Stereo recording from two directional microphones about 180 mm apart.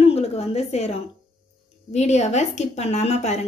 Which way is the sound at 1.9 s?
40° left (ahead or behind).